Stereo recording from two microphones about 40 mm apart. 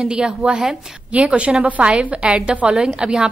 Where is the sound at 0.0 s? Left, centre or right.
Right.